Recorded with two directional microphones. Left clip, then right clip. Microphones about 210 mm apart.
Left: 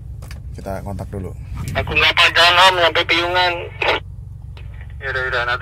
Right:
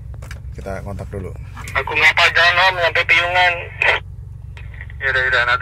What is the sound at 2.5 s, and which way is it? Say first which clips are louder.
Speech: left 3 dB; 45° left (ahead or behind).